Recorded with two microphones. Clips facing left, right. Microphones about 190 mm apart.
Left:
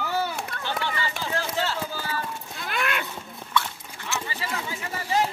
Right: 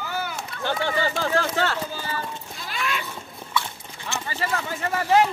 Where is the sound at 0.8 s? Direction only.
55° right (ahead or behind).